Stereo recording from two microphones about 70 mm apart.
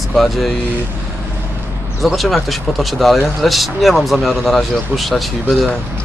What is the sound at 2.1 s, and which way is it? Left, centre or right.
Speech, centre.